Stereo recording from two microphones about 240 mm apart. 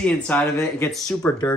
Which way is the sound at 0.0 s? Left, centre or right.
Centre.